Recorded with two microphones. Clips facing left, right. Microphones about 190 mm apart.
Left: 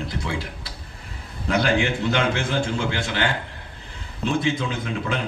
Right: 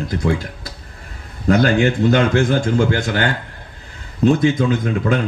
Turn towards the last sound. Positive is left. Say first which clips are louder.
# right 9 dB
turn(degrees=-45)  # may be behind; listen again after turning